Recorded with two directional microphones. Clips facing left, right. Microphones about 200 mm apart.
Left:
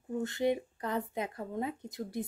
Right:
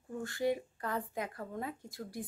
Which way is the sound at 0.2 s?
20° left (ahead or behind).